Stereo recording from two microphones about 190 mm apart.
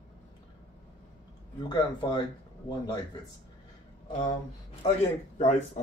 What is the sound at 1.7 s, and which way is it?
Speech, 25° left (ahead or behind).